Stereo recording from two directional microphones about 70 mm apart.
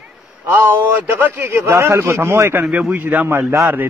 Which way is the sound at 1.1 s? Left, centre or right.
Right.